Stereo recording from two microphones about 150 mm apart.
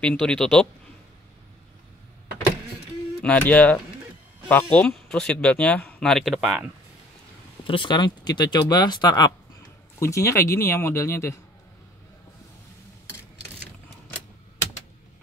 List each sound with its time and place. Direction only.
0.0 s speech: 5° left (ahead or behind)
3.2 s speech: 10° left (ahead or behind)
7.6 s speech: 35° left (ahead or behind)
9.9 s speech: 20° left (ahead or behind)